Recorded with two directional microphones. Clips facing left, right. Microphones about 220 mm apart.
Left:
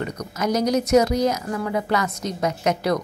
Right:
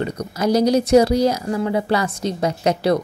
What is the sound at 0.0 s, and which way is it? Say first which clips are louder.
Speech: right 4 dB; 30° right (ahead or behind).